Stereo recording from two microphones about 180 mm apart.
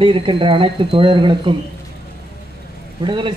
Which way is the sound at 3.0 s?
25° right (ahead or behind).